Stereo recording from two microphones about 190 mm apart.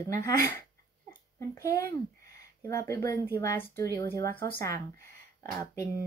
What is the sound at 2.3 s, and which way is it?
Speech, 15° left (ahead or behind).